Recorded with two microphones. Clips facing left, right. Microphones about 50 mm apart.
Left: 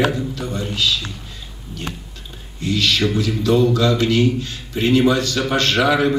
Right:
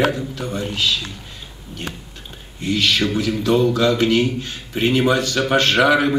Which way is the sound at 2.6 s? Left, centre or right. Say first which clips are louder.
Even; right.